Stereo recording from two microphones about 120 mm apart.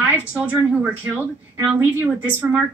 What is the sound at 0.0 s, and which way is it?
A woman's voice, 15° right (ahead or behind).